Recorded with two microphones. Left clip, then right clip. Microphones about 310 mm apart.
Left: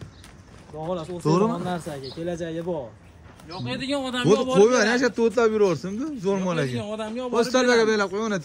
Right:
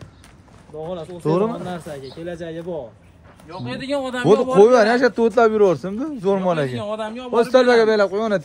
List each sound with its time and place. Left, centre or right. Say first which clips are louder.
1.2 s speech: right 3 dB; centre
2.0 s speech: even; left
3.5 s a man's voice: right 3 dB; centre
7.3 s a man's voice: right 6 dB; centre